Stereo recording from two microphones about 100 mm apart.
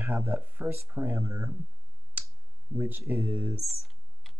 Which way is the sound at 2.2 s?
15° right (ahead or behind).